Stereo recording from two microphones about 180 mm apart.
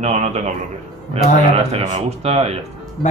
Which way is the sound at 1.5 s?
35° right (ahead or behind).